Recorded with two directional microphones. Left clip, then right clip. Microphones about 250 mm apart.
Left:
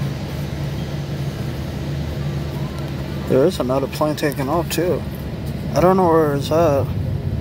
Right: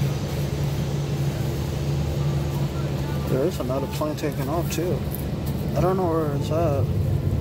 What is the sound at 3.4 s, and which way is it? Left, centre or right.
Speech, centre.